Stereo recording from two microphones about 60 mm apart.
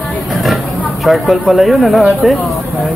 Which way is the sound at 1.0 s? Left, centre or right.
Centre.